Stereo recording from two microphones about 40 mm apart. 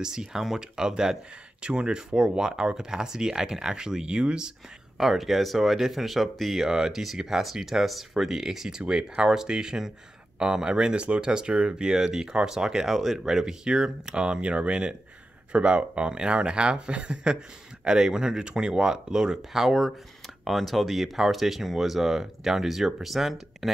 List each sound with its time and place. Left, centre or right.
0.0 s speech: centre
4.9 s speech: centre
20.4 s speech: centre